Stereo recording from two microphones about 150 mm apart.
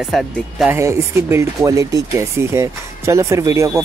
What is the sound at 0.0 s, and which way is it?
Speech, centre (ahead or behind).